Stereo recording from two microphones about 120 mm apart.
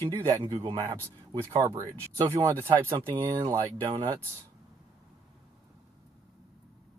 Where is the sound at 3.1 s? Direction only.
45° right (ahead or behind).